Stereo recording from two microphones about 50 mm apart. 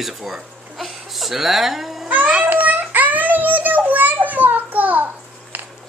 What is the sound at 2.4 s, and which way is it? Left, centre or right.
Child singing, right.